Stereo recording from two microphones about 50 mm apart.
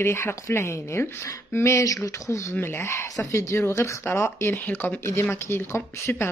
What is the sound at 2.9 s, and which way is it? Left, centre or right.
Speech, left.